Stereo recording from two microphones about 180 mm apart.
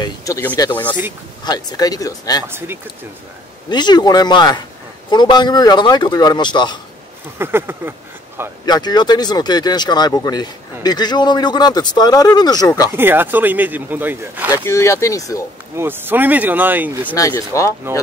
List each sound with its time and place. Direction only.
0.0 s speech: 15° left (ahead or behind)
2.4 s speech: 10° right (ahead or behind)
3.7 s speech: 25° left (ahead or behind)
7.3 s speech: 15° right (ahead or behind)
8.6 s speech: 25° left (ahead or behind)
12.9 s speech: 10° right (ahead or behind)
14.5 s speech: 15° left (ahead or behind)
15.7 s speech: 10° right (ahead or behind)
17.2 s speech: 15° left (ahead or behind)